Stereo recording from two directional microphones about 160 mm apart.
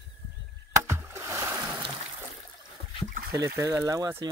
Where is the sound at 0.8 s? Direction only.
15° right (ahead or behind).